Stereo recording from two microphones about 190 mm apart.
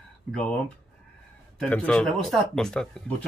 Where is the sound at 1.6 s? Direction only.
5° left (ahead or behind).